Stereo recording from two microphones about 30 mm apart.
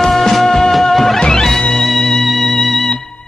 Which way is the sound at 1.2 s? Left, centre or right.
Left.